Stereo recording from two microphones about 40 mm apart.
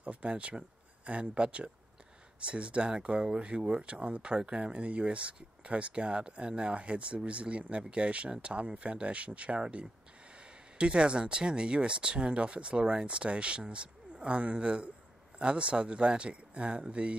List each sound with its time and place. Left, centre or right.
0.0 s speech: right